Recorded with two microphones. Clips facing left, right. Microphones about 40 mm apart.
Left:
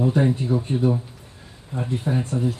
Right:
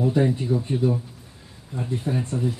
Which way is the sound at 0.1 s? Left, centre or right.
Left.